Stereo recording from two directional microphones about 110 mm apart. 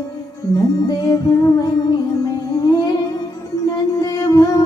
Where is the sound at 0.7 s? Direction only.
40° left (ahead or behind).